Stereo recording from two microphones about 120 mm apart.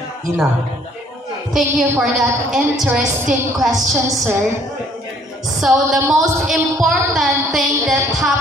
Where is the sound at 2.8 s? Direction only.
5° right (ahead or behind).